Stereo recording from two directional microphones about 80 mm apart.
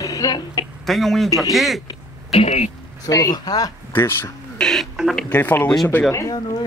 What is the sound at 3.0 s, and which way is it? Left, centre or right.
Speech, left.